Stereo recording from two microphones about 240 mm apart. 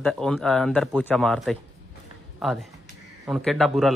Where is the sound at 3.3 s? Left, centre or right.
Centre.